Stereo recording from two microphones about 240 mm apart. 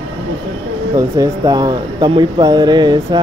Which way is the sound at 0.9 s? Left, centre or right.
Centre.